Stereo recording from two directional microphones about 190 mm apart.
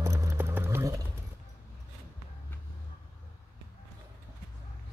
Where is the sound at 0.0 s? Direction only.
15° right (ahead or behind).